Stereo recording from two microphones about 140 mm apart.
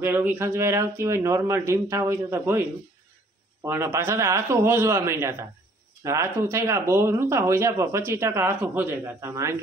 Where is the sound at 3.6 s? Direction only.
20° right (ahead or behind).